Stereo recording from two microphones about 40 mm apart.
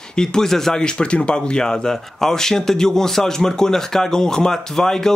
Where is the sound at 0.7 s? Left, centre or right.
Left.